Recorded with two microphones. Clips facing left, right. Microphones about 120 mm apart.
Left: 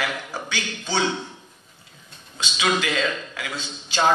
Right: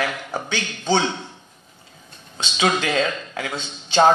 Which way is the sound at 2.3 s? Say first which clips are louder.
Right 2 dB; 30° right (ahead or behind).